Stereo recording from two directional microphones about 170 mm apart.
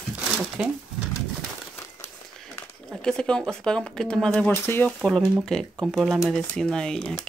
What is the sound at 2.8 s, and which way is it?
Speech, 5° left (ahead or behind).